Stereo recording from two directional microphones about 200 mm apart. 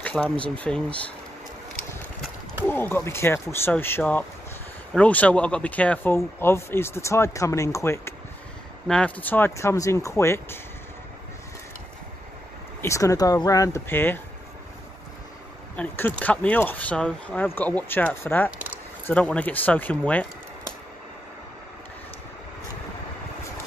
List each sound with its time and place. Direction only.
0.0 s speech: 5° left (ahead or behind)
2.7 s speech: 10° left (ahead or behind)
12.8 s speech: 15° left (ahead or behind)
15.7 s speech: 5° left (ahead or behind)